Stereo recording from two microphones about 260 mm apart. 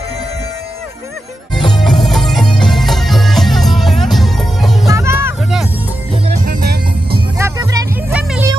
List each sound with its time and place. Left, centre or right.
1.5 s music: centre
4.8 s music: centre
6.2 s music: right
7.3 s music: centre